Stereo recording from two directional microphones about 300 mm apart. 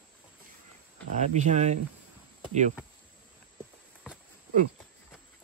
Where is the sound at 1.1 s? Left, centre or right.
Right.